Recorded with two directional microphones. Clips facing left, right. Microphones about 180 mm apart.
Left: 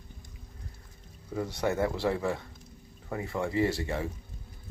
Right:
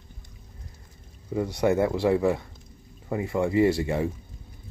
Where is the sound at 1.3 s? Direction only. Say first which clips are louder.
Right 7 dB; 15° right (ahead or behind).